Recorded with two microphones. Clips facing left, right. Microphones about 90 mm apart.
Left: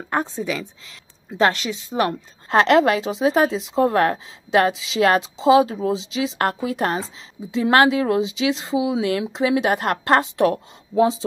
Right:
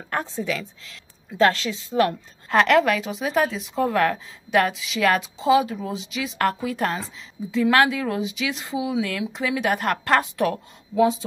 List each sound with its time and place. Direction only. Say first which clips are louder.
0.1 s a woman's voice: left 3 dB; 20° left (ahead or behind)